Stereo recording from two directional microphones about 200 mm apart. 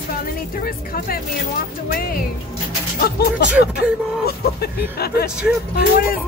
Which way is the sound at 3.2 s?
50° left (ahead or behind).